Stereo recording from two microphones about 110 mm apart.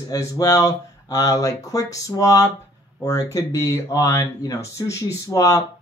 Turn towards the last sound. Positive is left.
turn(degrees=30)  # may be behind; listen again after turning